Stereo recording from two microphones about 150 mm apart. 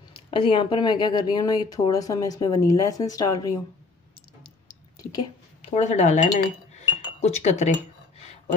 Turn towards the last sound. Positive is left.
turn(degrees=50)  # may be behind; listen again after turning